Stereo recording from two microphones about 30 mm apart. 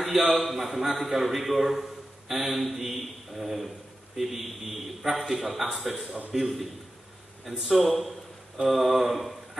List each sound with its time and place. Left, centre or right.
0.0 s a man's voice: centre
7.6 s a man's voice: centre